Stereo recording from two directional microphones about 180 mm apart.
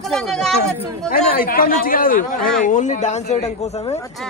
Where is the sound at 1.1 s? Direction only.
55° left (ahead or behind); by 3.9 s 40° left (ahead or behind).